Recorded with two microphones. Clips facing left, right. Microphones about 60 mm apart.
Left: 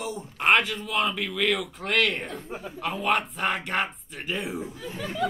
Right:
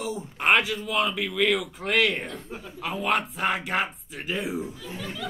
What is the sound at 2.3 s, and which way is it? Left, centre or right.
Speech, left.